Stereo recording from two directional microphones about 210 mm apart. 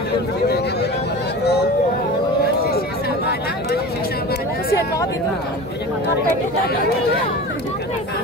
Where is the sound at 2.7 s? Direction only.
50° left (ahead or behind).